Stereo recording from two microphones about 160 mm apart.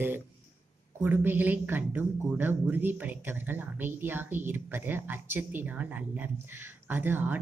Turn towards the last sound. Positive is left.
turn(degrees=-15)  # may be behind; listen again after turning